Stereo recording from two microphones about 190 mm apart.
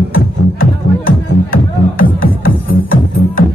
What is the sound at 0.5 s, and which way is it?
Music, 50° left (ahead or behind).